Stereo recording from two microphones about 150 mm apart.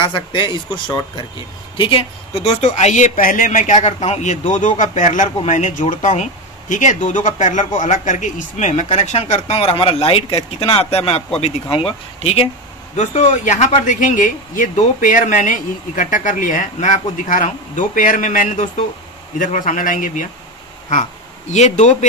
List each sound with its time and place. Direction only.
0.0 s speech: 30° left (ahead or behind)
1.8 s speech: 35° left (ahead or behind)
2.4 s a man's voice: 50° left (ahead or behind)